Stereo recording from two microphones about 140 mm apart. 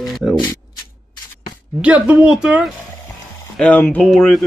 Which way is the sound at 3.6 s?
10° left (ahead or behind).